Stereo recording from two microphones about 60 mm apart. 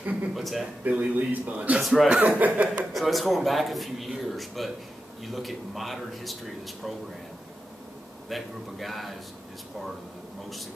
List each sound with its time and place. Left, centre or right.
0.0 s speech: right
0.3 s speech: centre
0.8 s speech: right
1.8 s speech: centre
2.0 s speech: right
2.9 s speech: centre
8.3 s speech: centre